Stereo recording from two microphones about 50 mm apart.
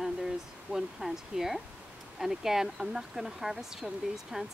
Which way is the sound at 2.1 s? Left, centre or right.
Centre.